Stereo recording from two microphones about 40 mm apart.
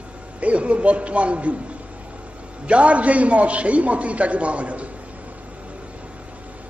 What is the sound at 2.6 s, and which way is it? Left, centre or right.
A man's voice, right.